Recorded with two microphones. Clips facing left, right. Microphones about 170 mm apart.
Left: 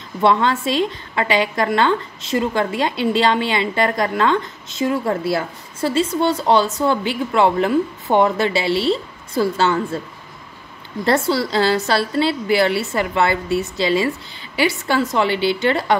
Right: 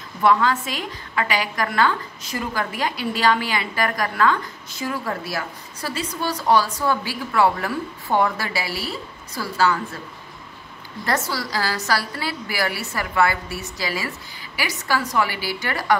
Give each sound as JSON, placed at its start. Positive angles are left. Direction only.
{"t": 0.2, "sound": "a woman's voice", "side_deg": 25}
{"t": 11.1, "sound": "a woman's voice", "side_deg": 25}